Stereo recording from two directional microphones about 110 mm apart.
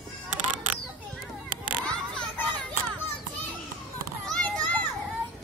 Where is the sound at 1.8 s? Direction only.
10° left (ahead or behind).